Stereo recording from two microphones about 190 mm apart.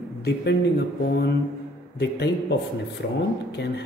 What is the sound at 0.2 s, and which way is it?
Speech, 60° left (ahead or behind).